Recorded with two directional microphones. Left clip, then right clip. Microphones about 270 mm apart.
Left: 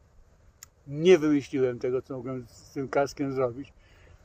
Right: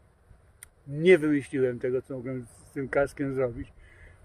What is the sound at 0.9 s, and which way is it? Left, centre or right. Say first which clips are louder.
Speech: even; centre.